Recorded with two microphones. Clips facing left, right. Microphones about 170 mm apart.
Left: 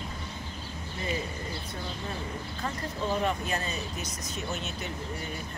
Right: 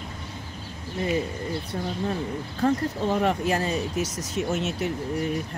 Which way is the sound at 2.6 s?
65° right (ahead or behind).